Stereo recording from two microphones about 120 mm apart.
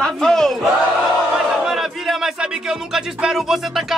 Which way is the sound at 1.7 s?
5° right (ahead or behind).